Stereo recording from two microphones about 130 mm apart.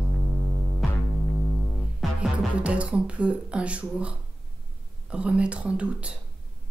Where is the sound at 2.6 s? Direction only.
10° right (ahead or behind).